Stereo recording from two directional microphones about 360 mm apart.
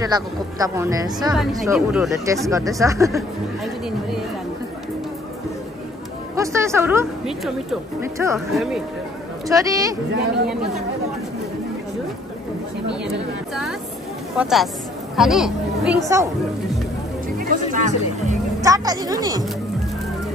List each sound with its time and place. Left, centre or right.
0.0 s a woman's voice: centre
6.3 s a woman's voice: centre
10.1 s speech: right
14.3 s speech: centre
17.4 s music: right
18.6 s speech: centre